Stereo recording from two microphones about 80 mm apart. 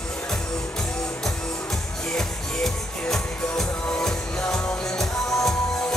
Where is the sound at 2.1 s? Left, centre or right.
Centre.